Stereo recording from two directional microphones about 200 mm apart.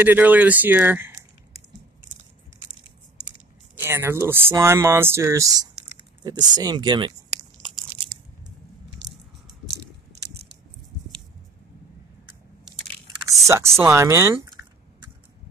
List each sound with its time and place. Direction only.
0.0 s speech: 10° right (ahead or behind)
3.8 s speech: 10° right (ahead or behind)
13.5 s speech: 15° right (ahead or behind)